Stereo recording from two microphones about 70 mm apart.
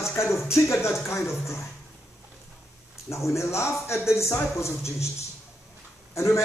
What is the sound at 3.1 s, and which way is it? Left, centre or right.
A man's voice, left.